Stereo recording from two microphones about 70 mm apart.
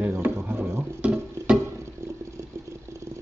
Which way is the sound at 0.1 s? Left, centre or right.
Right.